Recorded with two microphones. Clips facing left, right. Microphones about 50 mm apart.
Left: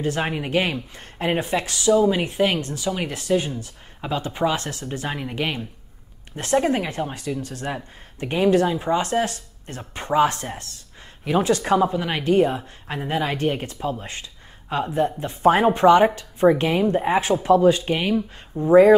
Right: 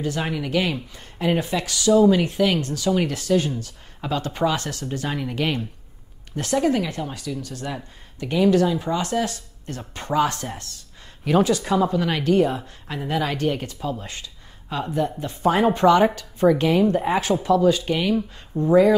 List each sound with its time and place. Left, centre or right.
0.0 s speech: left
1.9 s speech: left
2.3 s speech: left; by 5.7 s centre
6.3 s speech: left
11.4 s speech: left
11.8 s speech: left
17.3 s speech: left